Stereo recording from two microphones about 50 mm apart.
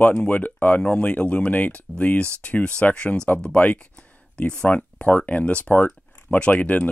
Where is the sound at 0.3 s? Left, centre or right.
Left.